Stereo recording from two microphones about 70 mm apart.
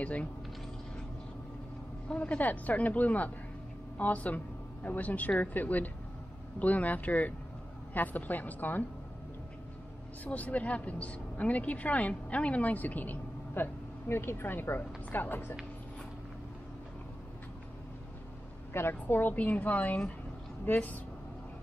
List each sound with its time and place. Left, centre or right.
0.0 s a woman's voice: centre
2.0 s a woman's voice: centre
10.2 s a woman's voice: left
18.7 s a woman's voice: left